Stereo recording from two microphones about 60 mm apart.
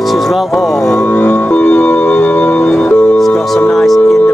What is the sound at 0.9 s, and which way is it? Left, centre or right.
Music, left.